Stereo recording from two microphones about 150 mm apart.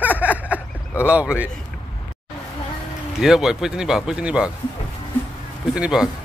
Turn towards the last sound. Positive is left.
turn(degrees=-5)  # may be behind; listen again after turning